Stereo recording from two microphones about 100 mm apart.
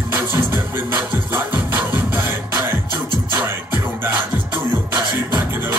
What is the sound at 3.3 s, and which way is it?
Music, 20° right (ahead or behind).